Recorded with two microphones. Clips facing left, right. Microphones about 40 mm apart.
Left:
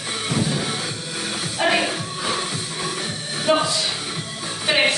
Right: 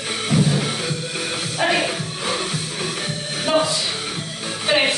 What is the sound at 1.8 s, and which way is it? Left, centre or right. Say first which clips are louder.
Music: even; centre.